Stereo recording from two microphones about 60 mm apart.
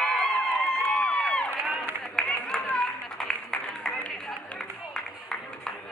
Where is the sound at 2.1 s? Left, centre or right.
Centre.